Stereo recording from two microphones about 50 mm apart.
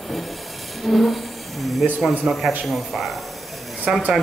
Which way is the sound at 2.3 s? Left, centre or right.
Right.